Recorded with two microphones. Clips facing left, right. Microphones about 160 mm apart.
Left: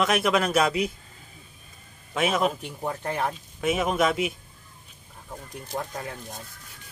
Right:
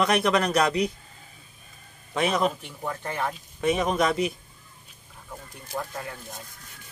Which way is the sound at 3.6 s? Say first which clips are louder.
Even; 5° left (ahead or behind).